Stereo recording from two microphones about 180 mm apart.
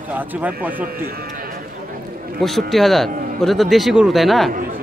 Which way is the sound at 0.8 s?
55° right (ahead or behind).